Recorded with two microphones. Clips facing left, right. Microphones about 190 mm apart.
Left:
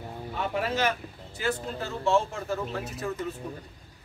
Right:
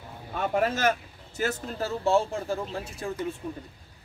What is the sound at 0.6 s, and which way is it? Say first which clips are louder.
Speech: right 3 dB; 45° right (ahead or behind).